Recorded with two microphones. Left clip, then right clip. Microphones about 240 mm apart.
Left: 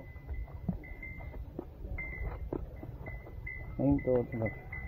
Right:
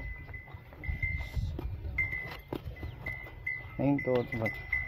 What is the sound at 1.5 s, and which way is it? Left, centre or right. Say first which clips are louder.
Music: right 9 dB; right.